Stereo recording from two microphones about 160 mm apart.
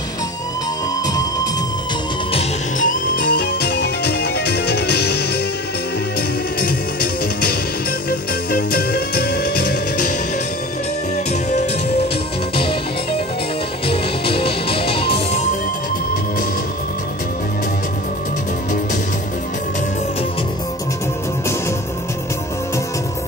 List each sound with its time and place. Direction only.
1.0 s music: 25° left (ahead or behind)
2.8 s music: 55° left (ahead or behind)
3.6 s music: 90° left
8.5 s music: 70° left (ahead or behind)
13.8 s music: 35° left (ahead or behind)